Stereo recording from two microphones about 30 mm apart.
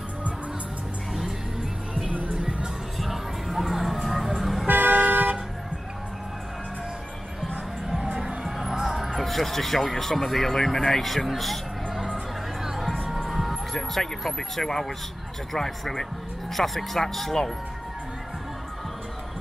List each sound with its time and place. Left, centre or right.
1.1 s music: centre
3.0 s music: centre
4.6 s toot: right
8.5 s music: centre
8.7 s music: centre
9.1 s speech: centre
11.2 s a sound: centre
13.2 s speech: centre